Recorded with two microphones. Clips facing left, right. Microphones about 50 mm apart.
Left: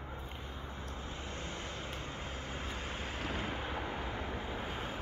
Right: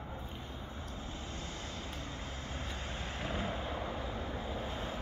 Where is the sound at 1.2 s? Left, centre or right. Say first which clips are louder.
Left 1 dB; left; by 3.2 s centre.